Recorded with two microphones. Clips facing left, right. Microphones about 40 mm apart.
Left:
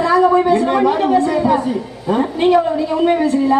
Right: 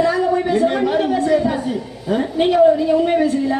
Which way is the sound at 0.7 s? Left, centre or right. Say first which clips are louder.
Left 4 dB; centre.